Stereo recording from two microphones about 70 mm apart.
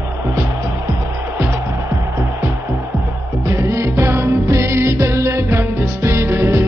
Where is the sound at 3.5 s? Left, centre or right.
Right.